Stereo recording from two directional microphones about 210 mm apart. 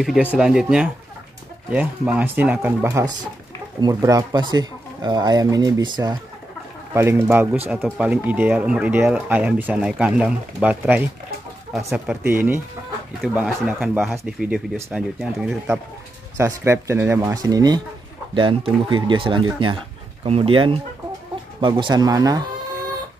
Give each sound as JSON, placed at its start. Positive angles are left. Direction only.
{"t": 0.0, "sound": "speech", "side_deg": 0}
{"t": 12.3, "sound": "speech", "side_deg": -10}